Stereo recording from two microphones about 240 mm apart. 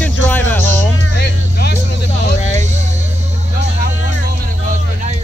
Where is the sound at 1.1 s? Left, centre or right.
Left.